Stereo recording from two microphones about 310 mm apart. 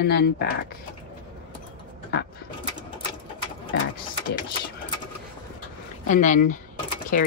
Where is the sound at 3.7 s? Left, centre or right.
Left.